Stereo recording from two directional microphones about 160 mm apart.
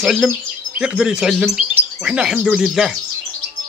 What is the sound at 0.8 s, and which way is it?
Speech, 5° right (ahead or behind).